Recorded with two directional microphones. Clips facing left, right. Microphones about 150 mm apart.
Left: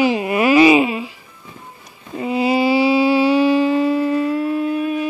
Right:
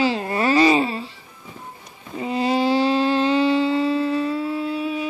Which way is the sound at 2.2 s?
5° left (ahead or behind).